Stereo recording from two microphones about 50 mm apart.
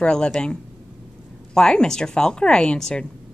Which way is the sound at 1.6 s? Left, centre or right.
Centre.